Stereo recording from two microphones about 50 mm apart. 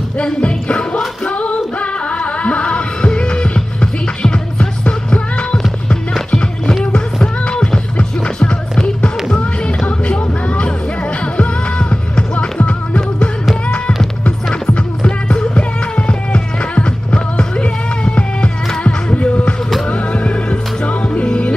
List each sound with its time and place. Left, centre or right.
0.2 s music: left
7.4 s music: centre
9.8 s a sound: left
11.3 s music: left